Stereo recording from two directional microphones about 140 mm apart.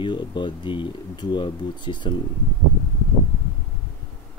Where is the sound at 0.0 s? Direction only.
35° left (ahead or behind).